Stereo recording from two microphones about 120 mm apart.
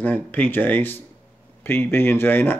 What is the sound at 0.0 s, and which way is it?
A man's voice, 15° left (ahead or behind).